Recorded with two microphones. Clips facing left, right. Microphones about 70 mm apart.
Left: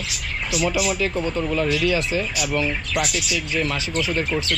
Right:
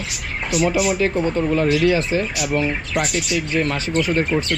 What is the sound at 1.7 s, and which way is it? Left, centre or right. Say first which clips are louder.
Speech: right 6 dB; right.